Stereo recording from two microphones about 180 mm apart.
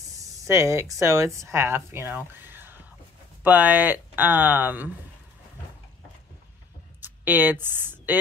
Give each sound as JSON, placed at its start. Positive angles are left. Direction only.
{"t": 0.1, "sound": "speech", "side_deg": -20}
{"t": 7.0, "sound": "speech", "side_deg": -10}